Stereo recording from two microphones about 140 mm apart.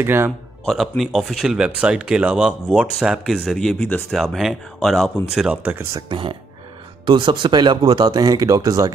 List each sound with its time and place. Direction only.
0.0 s speech: 15° right (ahead or behind)
0.7 s speech: centre (ahead or behind)
5.9 s speech: 35° right (ahead or behind)